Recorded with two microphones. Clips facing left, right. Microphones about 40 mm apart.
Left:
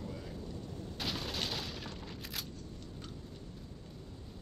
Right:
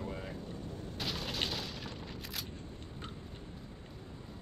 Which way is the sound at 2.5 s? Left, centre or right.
Right.